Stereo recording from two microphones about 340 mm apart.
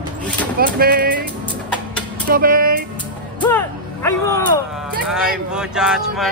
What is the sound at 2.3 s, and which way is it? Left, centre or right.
Speech, right.